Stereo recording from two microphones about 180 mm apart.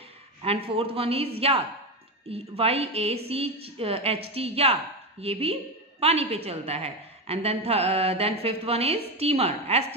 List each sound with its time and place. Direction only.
0.4 s a woman's voice: 35° right (ahead or behind)
2.3 s a woman's voice: 30° right (ahead or behind)